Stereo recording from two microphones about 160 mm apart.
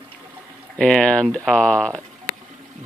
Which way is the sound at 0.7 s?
5° left (ahead or behind).